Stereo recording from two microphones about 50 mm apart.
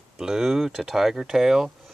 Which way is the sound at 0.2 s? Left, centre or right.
Centre.